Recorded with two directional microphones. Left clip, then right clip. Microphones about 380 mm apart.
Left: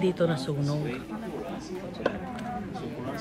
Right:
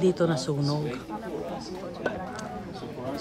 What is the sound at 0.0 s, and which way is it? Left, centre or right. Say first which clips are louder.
Speech: right 2 dB; centre.